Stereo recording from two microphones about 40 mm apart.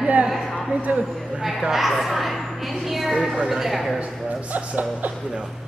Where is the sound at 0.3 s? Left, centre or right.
Centre.